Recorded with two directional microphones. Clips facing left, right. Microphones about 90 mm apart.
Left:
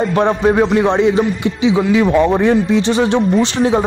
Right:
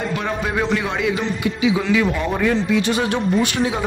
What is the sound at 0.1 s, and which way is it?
A man's voice, 35° left (ahead or behind).